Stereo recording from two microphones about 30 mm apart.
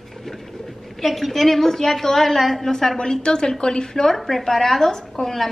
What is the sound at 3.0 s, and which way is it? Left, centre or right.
A woman's voice, left.